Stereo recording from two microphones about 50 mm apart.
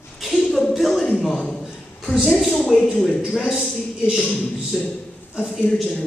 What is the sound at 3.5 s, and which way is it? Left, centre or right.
Speech, centre.